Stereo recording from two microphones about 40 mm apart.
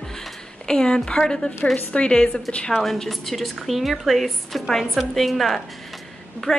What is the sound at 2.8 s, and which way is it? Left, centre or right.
A woman's voice, centre.